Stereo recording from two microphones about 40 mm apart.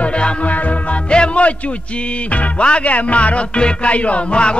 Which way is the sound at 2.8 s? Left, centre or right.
Left.